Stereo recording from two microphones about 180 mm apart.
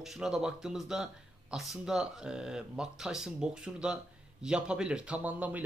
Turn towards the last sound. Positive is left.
turn(degrees=-10)  # may be behind; listen again after turning